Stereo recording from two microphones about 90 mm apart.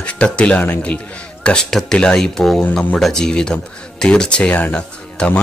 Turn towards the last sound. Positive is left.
turn(degrees=15)  # may be behind; listen again after turning